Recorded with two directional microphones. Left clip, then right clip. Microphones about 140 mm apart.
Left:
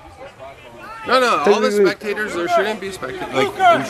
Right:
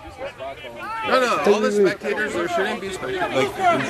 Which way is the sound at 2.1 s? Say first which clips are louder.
Left 4 dB; 30° left (ahead or behind).